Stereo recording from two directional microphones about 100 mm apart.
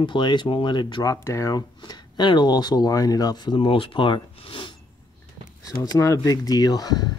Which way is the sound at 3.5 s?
60° left (ahead or behind).